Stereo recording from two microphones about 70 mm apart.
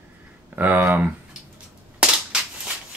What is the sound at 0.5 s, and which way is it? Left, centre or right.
Speech, right.